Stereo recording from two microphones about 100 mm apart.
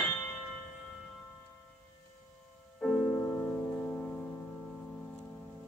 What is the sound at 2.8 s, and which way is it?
Music, 5° left (ahead or behind).